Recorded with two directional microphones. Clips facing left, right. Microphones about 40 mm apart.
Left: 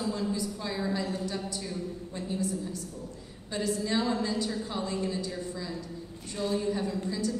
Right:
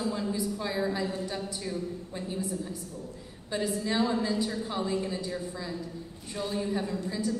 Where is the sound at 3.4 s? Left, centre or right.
Centre.